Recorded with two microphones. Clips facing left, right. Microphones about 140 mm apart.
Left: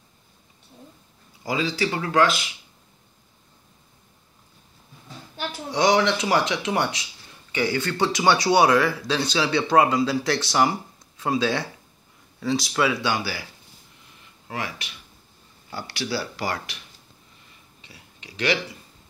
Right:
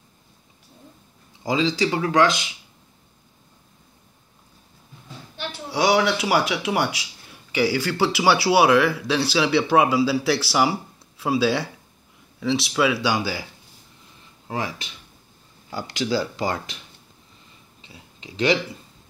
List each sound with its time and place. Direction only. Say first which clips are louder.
1.4 s speech: right 3 dB; 20° right (ahead or behind)
5.7 s speech: even; 10° right (ahead or behind)
12.6 s speech: right 3 dB; 5° right (ahead or behind); by 13.5 s 20° right (ahead or behind)
14.5 s speech: right 3 dB; 25° right (ahead or behind)
17.8 s speech: right 4 dB; 25° right (ahead or behind)